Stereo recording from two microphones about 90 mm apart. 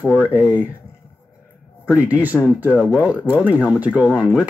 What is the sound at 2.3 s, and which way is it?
Speech, 10° left (ahead or behind).